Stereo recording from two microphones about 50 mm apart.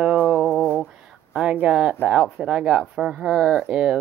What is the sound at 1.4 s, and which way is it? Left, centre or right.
Speech, right.